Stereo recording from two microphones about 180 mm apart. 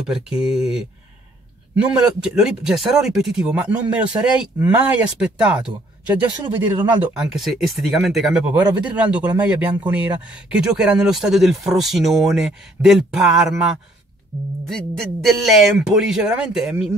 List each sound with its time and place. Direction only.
0.1 s speech: 5° right (ahead or behind)
2.2 s speech: 5° right (ahead or behind)
6.4 s speech: 25° right (ahead or behind)
7.2 s speech: centre (ahead or behind)